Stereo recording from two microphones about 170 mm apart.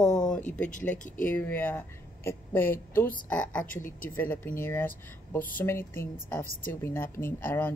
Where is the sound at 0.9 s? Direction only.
50° left (ahead or behind).